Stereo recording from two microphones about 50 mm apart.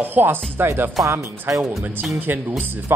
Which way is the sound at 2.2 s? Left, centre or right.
Right.